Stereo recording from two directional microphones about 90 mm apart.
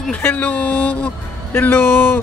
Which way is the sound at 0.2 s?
20° left (ahead or behind).